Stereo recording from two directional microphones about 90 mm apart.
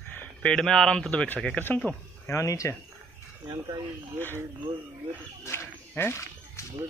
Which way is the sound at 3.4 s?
55° right (ahead or behind).